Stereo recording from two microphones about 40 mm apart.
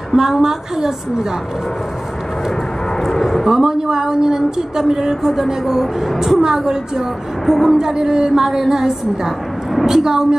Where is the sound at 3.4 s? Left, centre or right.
Centre.